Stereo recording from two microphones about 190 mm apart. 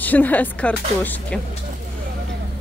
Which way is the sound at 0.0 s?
10° left (ahead or behind).